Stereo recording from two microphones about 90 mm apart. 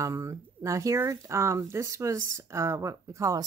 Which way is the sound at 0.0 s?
35° right (ahead or behind).